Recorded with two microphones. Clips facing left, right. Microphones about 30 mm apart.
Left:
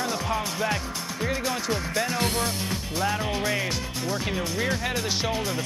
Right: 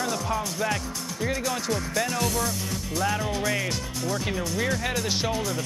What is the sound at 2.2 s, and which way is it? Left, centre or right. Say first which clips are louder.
Speech: left 1 dB; left.